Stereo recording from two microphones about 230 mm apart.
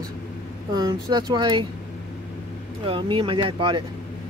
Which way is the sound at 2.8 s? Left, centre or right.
Right.